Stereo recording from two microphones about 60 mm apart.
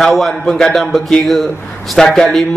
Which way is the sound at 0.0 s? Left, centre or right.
Centre.